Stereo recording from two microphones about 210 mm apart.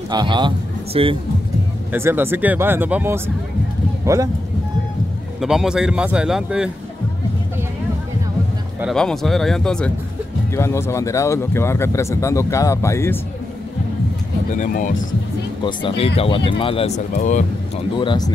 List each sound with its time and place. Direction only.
0.1 s a man's voice: 20° right (ahead or behind)
1.9 s speech: 10° right (ahead or behind)
5.4 s a man's voice: centre (ahead or behind)
8.8 s a man's voice: centre (ahead or behind)
14.5 s speech: 35° left (ahead or behind)
16.2 s speech: 25° left (ahead or behind)
17.1 s speech: 35° left (ahead or behind)
17.9 s speech: 20° left (ahead or behind)